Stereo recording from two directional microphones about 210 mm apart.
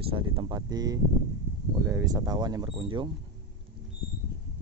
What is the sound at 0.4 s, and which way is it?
Speech, 20° right (ahead or behind).